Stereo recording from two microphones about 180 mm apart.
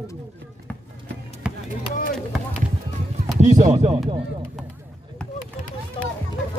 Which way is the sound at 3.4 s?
40° right (ahead or behind).